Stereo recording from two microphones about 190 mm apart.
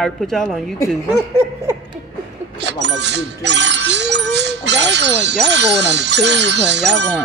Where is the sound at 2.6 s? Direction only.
65° right (ahead or behind).